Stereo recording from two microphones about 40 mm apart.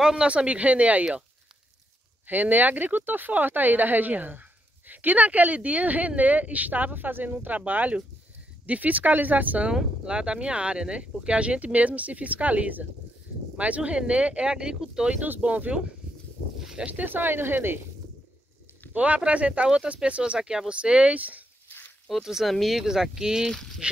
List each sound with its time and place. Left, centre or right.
0.0 s speech: centre
0.3 s speech: right
2.2 s speech: right
10.0 s speech: right
14.5 s speech: centre
15.1 s speech: right
15.4 s speech: right
17.0 s speech: right
18.9 s speech: right
20.3 s speech: centre
21.2 s speech: right
22.1 s speech: centre
22.8 s speech: centre
23.8 s speech: right